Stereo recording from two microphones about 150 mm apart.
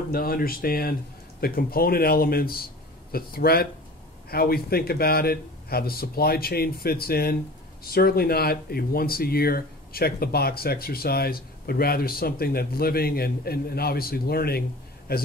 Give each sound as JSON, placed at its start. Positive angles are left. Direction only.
{"t": 0.1, "sound": "speech", "side_deg": 75}